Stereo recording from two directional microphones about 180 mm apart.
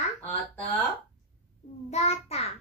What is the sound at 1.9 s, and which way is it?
Speech, 35° left (ahead or behind).